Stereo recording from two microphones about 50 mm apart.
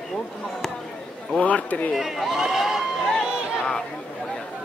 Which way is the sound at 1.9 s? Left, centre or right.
Centre.